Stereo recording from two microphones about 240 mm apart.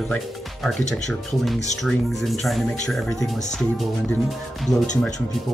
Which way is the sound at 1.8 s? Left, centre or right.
Centre.